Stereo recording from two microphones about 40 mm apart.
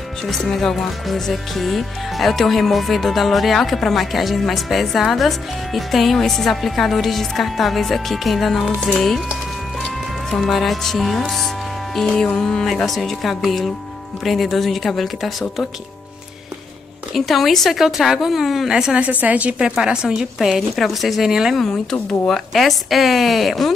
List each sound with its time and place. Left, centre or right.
0.3 s speech: centre
10.3 s speech: centre
12.3 s speech: centre
12.7 s speech: centre
17.1 s speech: centre
19.1 s a woman's voice: right
19.8 s a woman's voice: centre
20.7 s speech: centre
21.3 s a woman's voice: centre
22.5 s speech: centre